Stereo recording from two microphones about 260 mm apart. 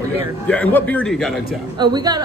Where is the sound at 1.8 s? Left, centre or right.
Centre.